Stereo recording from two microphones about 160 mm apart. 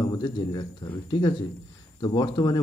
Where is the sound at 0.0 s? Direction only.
25° left (ahead or behind).